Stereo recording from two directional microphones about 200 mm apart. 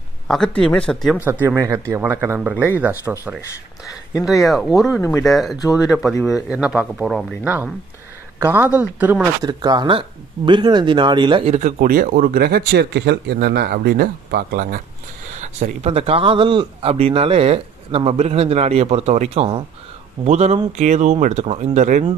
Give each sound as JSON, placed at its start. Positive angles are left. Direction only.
{"t": 0.3, "sound": "speech", "side_deg": 5}
{"t": 1.2, "sound": "speech", "side_deg": -10}
{"t": 5.6, "sound": "speech", "side_deg": 15}
{"t": 6.5, "sound": "speech", "side_deg": -5}
{"t": 9.5, "sound": "speech", "side_deg": -20}
{"t": 11.5, "sound": "speech", "side_deg": -40}
{"t": 15.3, "sound": "speech", "side_deg": -35}